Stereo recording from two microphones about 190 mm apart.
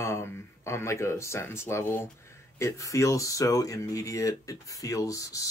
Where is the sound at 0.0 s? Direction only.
15° left (ahead or behind).